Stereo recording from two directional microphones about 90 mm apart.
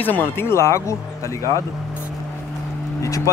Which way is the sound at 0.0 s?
25° left (ahead or behind).